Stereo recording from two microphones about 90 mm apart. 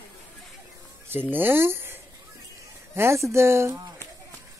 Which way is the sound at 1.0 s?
20° right (ahead or behind).